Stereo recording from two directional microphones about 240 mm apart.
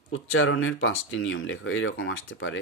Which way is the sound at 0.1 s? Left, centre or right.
Left.